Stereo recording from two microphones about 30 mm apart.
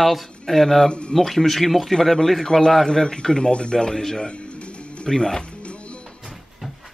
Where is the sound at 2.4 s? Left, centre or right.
Centre.